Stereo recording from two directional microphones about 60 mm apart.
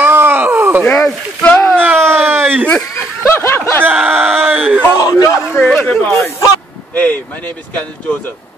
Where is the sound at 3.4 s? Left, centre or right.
Left.